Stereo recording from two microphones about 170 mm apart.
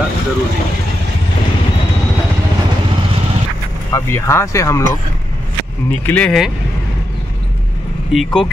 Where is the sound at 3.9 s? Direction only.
15° left (ahead or behind).